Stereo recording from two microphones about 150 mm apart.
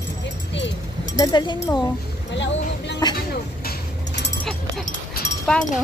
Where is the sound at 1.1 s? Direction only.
25° left (ahead or behind).